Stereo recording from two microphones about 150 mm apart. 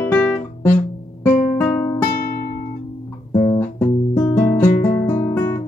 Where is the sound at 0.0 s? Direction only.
10° left (ahead or behind).